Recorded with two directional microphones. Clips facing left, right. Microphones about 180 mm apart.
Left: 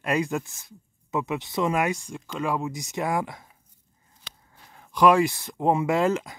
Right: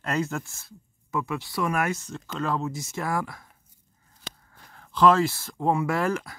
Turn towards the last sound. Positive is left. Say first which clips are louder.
# left 3 dB
turn(degrees=20)  # may be behind; listen again after turning